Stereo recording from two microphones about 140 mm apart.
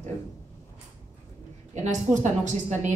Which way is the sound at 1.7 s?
60° right (ahead or behind).